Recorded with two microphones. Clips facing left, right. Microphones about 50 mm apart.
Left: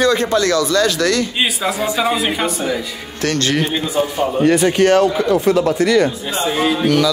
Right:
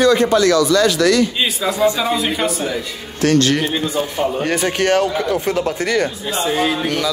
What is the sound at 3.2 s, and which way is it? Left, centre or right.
Speech, left.